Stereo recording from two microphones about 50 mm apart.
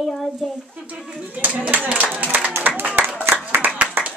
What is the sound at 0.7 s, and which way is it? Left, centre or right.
Speech, right.